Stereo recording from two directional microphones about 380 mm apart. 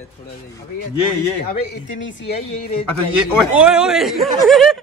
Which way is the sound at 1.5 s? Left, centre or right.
Left.